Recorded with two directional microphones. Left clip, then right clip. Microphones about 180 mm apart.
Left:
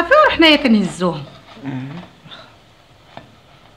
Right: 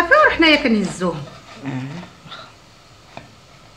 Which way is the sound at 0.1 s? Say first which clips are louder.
Left 3 dB; 50° left (ahead or behind).